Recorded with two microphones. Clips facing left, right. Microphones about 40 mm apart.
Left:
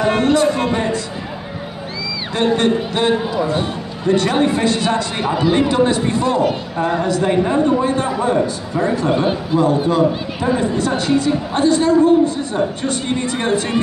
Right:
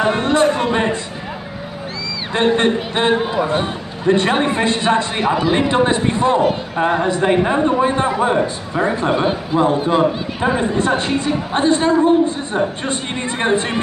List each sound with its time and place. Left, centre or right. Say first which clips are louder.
0.2 s a sound: even; right
2.3 s a man's voice: right 1 dB; right
5.2 s a man's voice: right 1 dB; centre
5.5 s a man's voice: left 3 dB; right